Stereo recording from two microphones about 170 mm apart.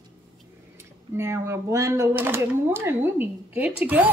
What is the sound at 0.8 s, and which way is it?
A woman's voice, 15° right (ahead or behind).